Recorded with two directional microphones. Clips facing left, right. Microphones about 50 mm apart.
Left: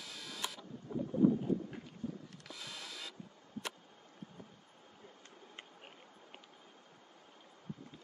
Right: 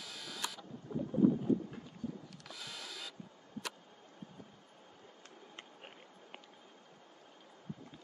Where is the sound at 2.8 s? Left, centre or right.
Left.